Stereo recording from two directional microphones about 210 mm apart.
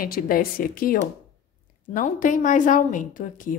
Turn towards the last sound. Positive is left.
turn(degrees=40)  # may be behind; listen again after turning